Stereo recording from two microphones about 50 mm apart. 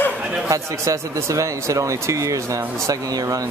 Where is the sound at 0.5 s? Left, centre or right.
Right.